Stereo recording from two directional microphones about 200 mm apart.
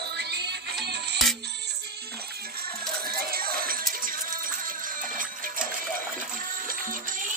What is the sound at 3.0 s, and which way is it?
Music, 50° right (ahead or behind).